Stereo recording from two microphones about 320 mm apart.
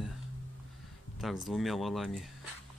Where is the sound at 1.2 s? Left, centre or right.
Centre.